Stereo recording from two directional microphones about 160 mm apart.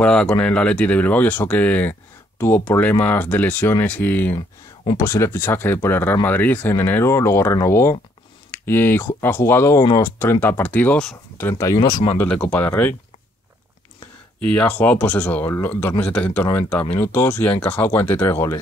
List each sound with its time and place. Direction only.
0.0 s speech: 5° left (ahead or behind); by 12.1 s 25° left (ahead or behind)
12.2 s speech: 10° left (ahead or behind)
14.4 s speech: 10° left (ahead or behind)